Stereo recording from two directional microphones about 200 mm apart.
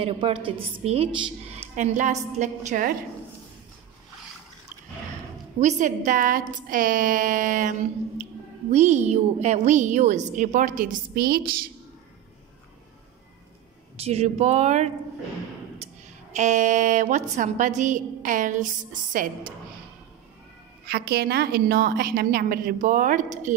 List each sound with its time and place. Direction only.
0.0 s a woman's voice: 25° right (ahead or behind); by 3.0 s 45° right (ahead or behind)
5.6 s a woman's voice: 35° right (ahead or behind)
14.0 s a woman's voice: 30° right (ahead or behind)
16.3 s a woman's voice: 35° right (ahead or behind)
20.8 s a woman's voice: 55° right (ahead or behind)